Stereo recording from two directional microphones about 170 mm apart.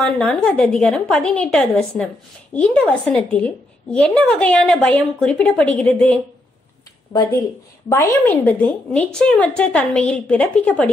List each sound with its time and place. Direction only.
0.0 s a woman's voice: 5° left (ahead or behind)
7.9 s a woman's voice: 10° left (ahead or behind)